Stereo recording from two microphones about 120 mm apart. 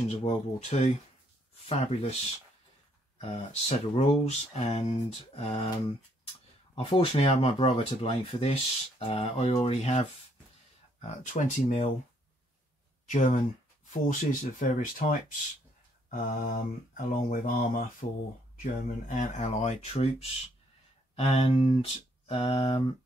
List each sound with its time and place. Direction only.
0.1 s speech: 60° left (ahead or behind); by 0.9 s 75° left (ahead or behind)
1.7 s speech: 60° left (ahead or behind)
3.2 s speech: 60° left (ahead or behind)
6.7 s speech: 55° left (ahead or behind)
11.0 s mantra: 90° left
13.1 s mantra: 90° left
16.3 s mantra: 90° left
18.0 s speech: 75° left (ahead or behind)
18.6 s speech: 90° left; by 19.9 s 70° left (ahead or behind)
19.9 s speech: 55° left (ahead or behind)